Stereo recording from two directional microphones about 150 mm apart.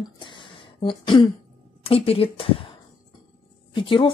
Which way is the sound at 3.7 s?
35° left (ahead or behind).